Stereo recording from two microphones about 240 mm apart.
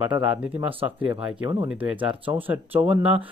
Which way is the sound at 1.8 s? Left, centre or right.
Centre.